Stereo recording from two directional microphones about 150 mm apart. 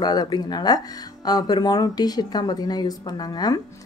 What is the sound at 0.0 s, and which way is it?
Speech, 25° left (ahead or behind).